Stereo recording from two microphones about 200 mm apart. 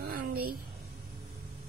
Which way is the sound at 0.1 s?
50° right (ahead or behind).